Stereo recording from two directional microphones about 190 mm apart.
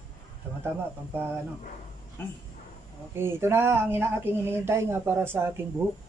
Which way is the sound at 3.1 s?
10° right (ahead or behind).